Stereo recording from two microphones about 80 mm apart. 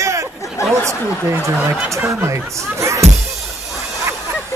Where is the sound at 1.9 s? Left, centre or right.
Right.